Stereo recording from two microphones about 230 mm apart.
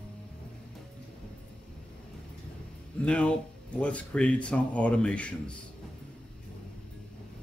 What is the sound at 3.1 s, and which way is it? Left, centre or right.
Speech, centre.